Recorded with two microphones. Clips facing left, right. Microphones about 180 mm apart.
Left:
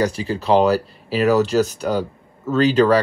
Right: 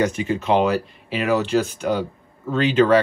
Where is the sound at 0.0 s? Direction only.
35° left (ahead or behind).